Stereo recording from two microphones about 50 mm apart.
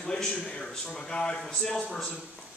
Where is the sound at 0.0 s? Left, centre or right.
Centre.